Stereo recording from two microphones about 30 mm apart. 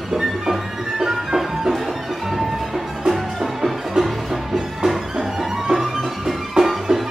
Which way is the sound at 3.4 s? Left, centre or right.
Centre.